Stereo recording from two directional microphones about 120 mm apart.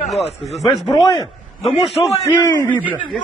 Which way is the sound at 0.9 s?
35° left (ahead or behind).